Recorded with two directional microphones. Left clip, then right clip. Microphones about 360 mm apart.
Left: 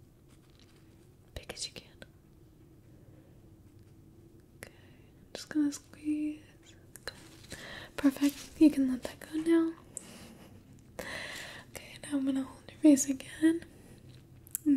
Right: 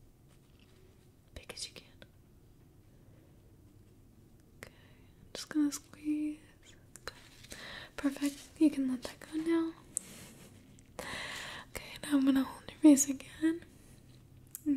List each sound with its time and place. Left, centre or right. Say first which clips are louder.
1.3 s whispering: left 4 dB; centre
4.6 s whispering: left 2 dB; centre
5.3 s speech: left 1 dB; centre
5.7 s a sound: left 2 dB; centre
5.9 s a sound: left 2 dB; centre
6.9 s whispering: left 3 dB; centre; by 12.7 s right
12.8 s a woman's voice: even; centre